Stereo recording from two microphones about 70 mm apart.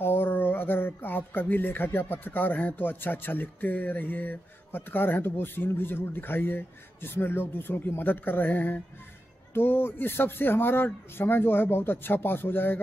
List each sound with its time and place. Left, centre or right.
0.0 s a man's voice: left